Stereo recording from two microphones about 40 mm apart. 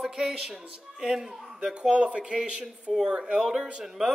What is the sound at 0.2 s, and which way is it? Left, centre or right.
Speech, centre.